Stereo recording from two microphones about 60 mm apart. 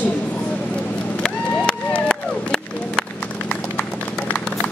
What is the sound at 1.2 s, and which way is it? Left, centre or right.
Run, centre.